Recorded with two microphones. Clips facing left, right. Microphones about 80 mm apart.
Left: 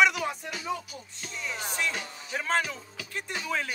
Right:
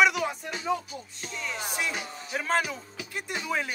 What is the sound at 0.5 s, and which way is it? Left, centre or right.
Music, right.